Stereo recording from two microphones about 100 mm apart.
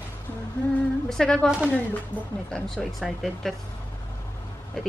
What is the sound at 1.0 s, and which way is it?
Speech, 5° left (ahead or behind).